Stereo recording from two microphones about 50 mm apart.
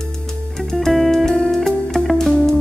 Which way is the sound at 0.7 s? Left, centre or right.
Centre.